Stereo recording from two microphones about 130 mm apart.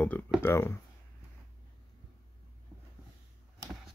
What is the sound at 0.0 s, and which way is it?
Speech, 15° left (ahead or behind).